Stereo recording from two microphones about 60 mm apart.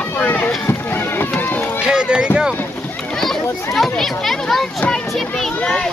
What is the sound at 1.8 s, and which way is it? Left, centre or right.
Run, centre.